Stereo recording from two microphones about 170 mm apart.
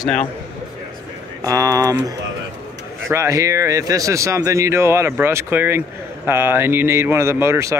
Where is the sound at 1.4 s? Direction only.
20° right (ahead or behind).